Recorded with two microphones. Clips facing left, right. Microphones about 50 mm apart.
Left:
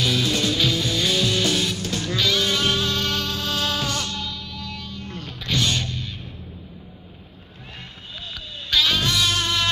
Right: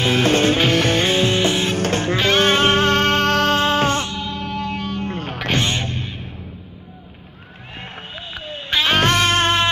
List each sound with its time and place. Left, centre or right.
0.0 s music: right
1.0 s music: right
1.8 s music: right
3.5 s music: right
5.6 s music: right
8.4 s music: right
8.9 s music: right